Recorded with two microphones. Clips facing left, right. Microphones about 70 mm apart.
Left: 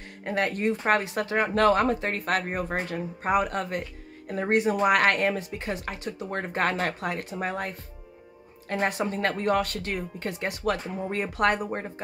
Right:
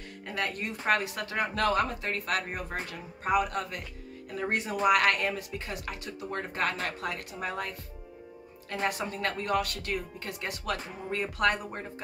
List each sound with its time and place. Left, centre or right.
0.2 s speech: left
7.0 s speech: left